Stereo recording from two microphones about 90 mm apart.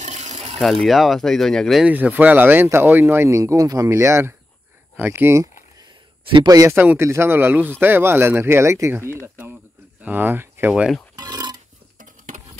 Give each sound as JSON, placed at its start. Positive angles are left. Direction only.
{"t": 0.6, "sound": "speech", "side_deg": 5}
{"t": 1.9, "sound": "speech", "side_deg": -20}
{"t": 3.9, "sound": "speech", "side_deg": -30}
{"t": 6.4, "sound": "speech", "side_deg": -45}
{"t": 6.7, "sound": "speech", "side_deg": -25}
{"t": 11.1, "sound": "a sound", "side_deg": -45}